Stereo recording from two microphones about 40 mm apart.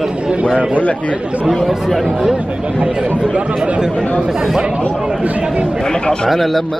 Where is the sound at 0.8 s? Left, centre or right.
Left.